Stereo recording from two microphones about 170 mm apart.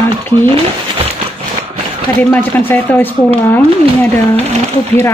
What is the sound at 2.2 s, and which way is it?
A woman's voice, 10° left (ahead or behind).